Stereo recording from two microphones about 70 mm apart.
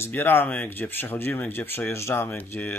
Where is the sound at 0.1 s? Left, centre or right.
Left.